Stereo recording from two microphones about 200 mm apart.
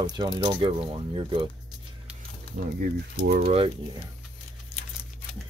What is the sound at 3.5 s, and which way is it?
Speech, 25° right (ahead or behind).